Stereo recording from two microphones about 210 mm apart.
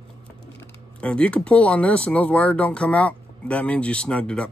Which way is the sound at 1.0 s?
5° left (ahead or behind).